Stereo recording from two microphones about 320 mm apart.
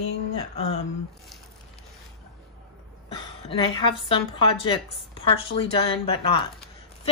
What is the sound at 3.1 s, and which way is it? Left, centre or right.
A woman's voice, centre.